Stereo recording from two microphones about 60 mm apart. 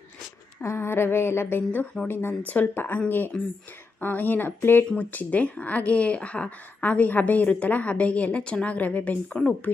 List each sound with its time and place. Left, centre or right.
0.6 s a sound: left
2.0 s speech: left
3.3 s speech: left
4.0 s speech: left
4.9 s speech: left